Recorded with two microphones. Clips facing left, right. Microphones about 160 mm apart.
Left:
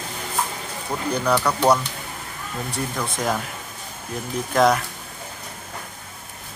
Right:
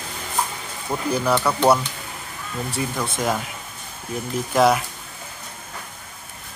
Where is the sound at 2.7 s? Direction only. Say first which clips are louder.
Right 1 dB; 5° right (ahead or behind).